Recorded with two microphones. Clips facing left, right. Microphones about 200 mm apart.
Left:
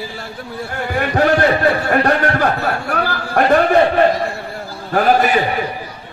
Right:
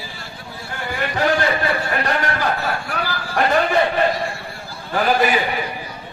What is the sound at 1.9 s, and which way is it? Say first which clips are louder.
A man's voice: left 7 dB; 60° left (ahead or behind).